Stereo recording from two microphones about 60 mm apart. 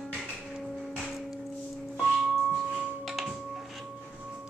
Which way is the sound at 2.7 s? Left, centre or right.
Right.